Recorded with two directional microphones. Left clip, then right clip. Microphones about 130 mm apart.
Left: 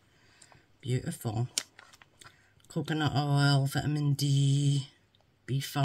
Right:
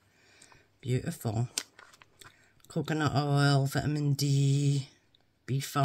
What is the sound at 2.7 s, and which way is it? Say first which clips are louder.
Speech: right 1 dB; 40° right (ahead or behind).